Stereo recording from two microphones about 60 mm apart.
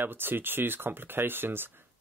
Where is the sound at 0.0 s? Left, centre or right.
Right.